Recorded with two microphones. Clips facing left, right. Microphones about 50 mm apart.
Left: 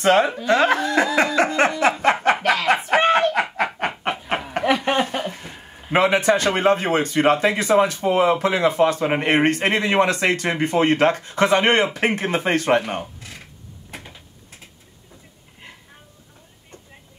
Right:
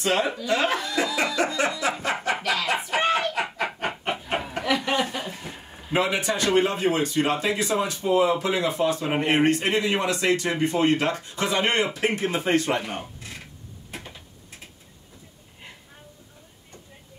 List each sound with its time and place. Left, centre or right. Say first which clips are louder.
0.0 s speech: left 7 dB; left
2.4 s a sound: left 6 dB; left
5.9 s speech: left 7 dB; left